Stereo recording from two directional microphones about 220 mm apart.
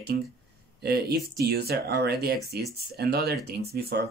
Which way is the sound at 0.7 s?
45° right (ahead or behind).